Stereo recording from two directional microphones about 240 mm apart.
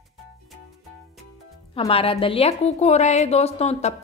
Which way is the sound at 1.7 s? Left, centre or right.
Left.